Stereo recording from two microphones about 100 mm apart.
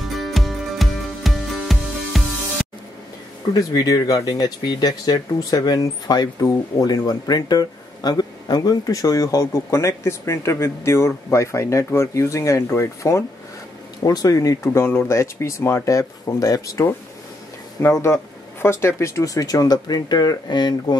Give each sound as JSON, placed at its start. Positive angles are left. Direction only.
{"t": 0.0, "sound": "music", "side_deg": 0}
{"t": 3.5, "sound": "speech", "side_deg": 35}